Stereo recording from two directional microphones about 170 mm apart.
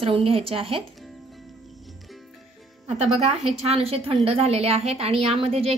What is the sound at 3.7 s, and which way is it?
A woman's voice, 35° right (ahead or behind).